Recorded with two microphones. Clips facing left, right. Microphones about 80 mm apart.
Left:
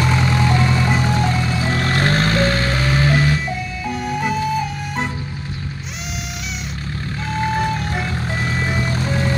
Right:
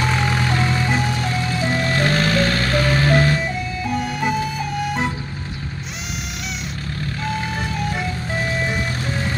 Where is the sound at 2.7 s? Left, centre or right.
Centre.